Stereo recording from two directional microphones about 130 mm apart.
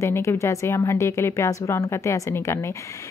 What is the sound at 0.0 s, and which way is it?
Speech, 20° left (ahead or behind).